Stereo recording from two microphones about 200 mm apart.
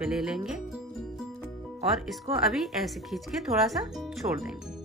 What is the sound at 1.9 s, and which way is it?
Speech, centre (ahead or behind).